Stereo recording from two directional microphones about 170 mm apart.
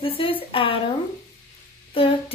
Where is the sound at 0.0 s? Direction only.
30° left (ahead or behind).